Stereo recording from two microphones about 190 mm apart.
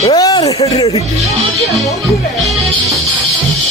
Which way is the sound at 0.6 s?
35° left (ahead or behind).